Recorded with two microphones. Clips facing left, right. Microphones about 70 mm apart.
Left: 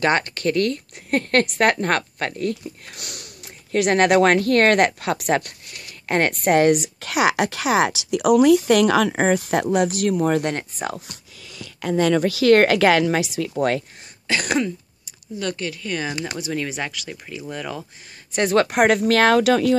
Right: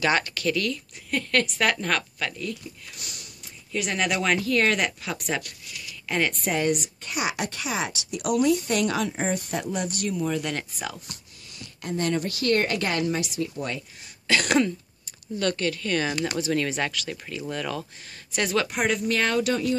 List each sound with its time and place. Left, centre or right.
0.0 s speech: left
10.4 s speech: left
12.4 s speech: left
14.2 s throat clearing: left
15.3 s speech: centre
18.5 s speech: left